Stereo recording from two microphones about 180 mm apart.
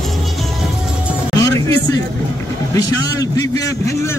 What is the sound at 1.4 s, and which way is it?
Music, 20° left (ahead or behind).